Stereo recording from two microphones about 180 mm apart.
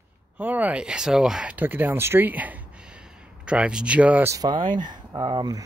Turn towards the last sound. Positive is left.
turn(degrees=-20)  # may be behind; listen again after turning